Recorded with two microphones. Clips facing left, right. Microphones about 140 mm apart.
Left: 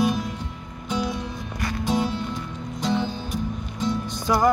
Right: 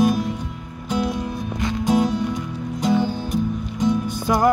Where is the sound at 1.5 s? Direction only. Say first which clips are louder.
Right 5 dB; 20° right (ahead or behind).